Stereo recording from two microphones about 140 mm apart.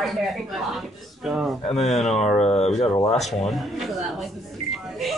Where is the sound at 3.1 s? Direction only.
55° left (ahead or behind).